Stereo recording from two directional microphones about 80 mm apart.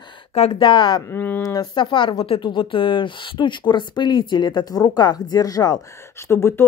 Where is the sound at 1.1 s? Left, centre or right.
Left.